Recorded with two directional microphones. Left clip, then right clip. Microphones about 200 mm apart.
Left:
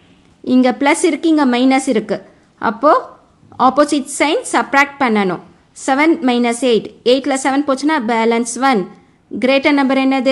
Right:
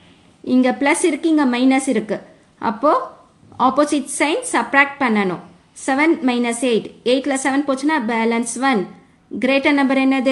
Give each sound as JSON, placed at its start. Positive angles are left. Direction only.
{"t": 0.5, "sound": "a woman's voice", "side_deg": 25}